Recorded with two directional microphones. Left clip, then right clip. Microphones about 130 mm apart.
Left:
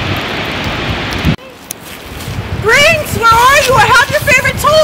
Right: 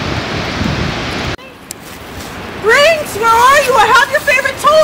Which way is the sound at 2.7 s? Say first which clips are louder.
Left 1 dB; centre (ahead or behind).